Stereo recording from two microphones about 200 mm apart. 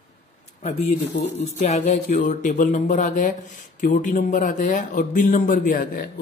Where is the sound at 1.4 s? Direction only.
35° left (ahead or behind).